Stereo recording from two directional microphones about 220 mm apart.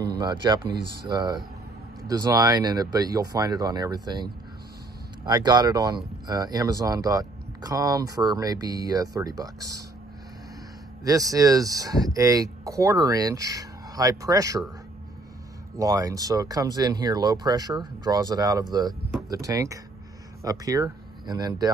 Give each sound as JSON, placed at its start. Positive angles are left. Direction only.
{"t": 0.2, "sound": "speech", "side_deg": -20}
{"t": 11.1, "sound": "speech", "side_deg": -15}
{"t": 15.8, "sound": "speech", "side_deg": -15}